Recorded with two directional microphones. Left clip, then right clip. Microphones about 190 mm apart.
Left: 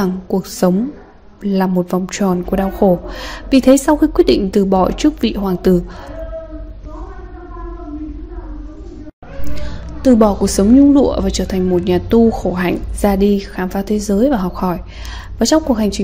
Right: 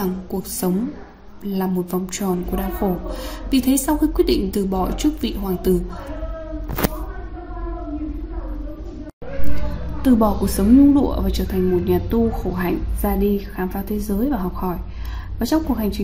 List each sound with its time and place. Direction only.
0.0 s a woman's voice: 40° left (ahead or behind)
10.0 s a woman's voice: 30° left (ahead or behind)